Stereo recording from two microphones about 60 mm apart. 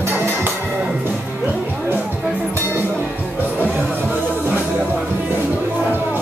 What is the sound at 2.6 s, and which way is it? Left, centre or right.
Music, right.